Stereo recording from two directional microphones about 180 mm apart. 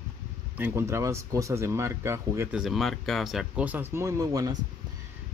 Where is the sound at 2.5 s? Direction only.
Centre (ahead or behind); by 4.6 s 20° right (ahead or behind).